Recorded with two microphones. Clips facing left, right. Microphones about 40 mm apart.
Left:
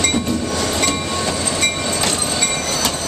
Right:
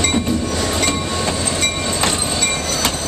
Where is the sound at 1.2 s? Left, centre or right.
Right.